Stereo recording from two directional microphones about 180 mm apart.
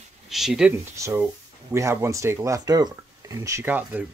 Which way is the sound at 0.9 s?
15° right (ahead or behind).